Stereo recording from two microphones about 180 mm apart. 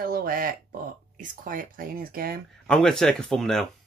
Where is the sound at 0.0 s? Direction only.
55° right (ahead or behind).